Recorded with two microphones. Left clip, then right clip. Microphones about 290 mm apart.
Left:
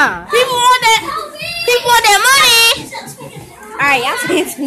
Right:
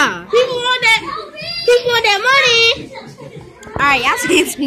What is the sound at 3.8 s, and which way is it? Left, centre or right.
Speech, centre.